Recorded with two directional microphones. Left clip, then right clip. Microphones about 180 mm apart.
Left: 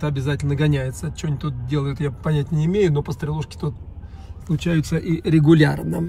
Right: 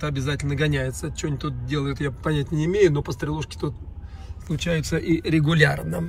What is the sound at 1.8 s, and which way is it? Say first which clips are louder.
Speech: left 1 dB; 10° left (ahead or behind).